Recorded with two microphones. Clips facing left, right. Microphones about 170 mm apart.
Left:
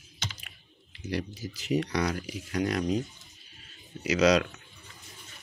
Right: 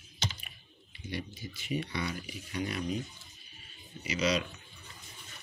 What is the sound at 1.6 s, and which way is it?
Speech, 90° left.